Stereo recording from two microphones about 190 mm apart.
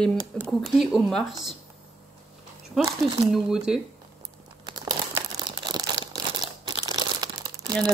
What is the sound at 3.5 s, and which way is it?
Speech, 5° right (ahead or behind).